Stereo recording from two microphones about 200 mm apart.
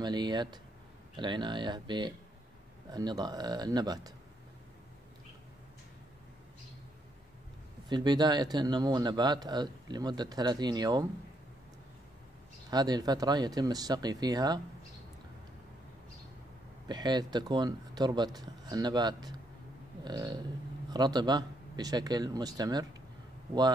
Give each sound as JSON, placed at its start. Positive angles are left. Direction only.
{"t": 0.0, "sound": "speech", "side_deg": -20}
{"t": 7.9, "sound": "speech", "side_deg": -20}
{"t": 12.6, "sound": "speech", "side_deg": -20}
{"t": 16.8, "sound": "speech", "side_deg": -20}